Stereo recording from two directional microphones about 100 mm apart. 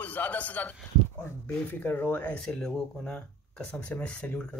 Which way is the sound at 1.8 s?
20° left (ahead or behind).